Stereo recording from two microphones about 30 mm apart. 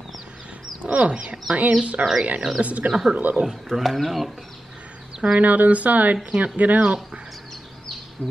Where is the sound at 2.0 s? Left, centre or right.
Right.